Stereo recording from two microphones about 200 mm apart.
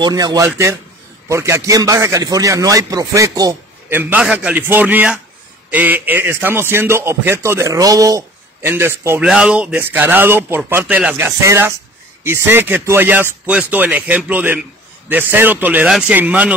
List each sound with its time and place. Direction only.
0.0 s a man's voice: 20° right (ahead or behind)